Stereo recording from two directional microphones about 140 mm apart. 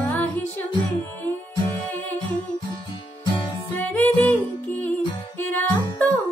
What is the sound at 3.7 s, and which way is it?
Music, 15° left (ahead or behind).